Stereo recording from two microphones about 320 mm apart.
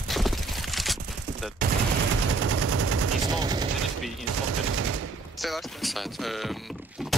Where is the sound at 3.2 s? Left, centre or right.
Centre.